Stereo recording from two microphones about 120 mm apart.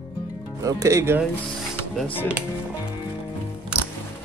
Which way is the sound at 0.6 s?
30° right (ahead or behind).